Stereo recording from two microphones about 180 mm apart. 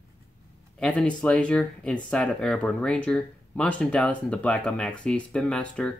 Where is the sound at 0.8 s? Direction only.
5° left (ahead or behind).